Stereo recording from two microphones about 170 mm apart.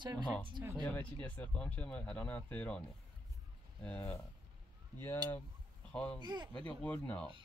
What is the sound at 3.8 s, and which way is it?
Speech, 10° left (ahead or behind).